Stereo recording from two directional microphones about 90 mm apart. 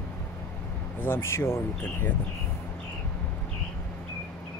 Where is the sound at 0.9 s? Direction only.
25° left (ahead or behind).